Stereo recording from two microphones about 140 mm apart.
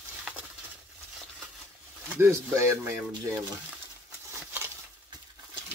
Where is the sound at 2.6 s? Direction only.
20° right (ahead or behind).